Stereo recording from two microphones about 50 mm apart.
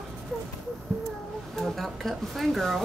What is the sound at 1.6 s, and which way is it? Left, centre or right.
A woman's voice, centre.